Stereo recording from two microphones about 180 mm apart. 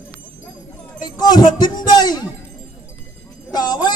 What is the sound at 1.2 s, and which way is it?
Music, 20° left (ahead or behind).